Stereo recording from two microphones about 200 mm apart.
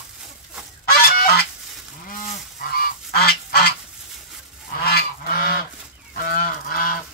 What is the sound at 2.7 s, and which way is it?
Goose, 50° left (ahead or behind).